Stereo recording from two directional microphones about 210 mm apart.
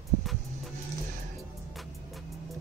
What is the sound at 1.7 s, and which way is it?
Music, centre (ahead or behind).